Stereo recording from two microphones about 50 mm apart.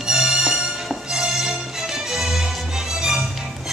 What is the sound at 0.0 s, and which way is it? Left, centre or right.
Music, centre.